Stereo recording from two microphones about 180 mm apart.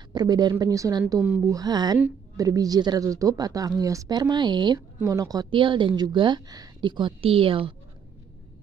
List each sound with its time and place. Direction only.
0.1 s a woman's voice: 20° right (ahead or behind)